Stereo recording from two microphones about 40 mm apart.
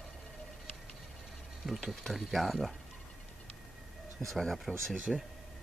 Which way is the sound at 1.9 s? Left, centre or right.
Centre.